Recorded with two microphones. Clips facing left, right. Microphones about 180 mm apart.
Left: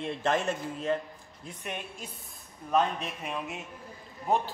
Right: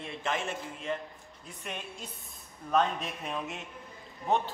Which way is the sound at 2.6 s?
5° left (ahead or behind).